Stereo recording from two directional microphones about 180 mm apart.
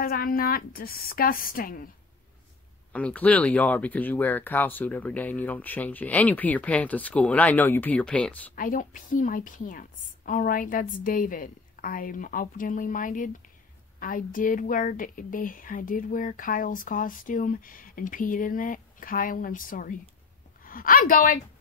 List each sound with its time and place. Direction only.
0.0 s a woman's voice: 55° left (ahead or behind)
2.9 s speech: 5° left (ahead or behind)
8.5 s a woman's voice: 50° left (ahead or behind)